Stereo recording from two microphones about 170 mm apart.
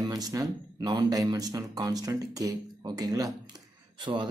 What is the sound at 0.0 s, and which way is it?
Speech, 20° right (ahead or behind).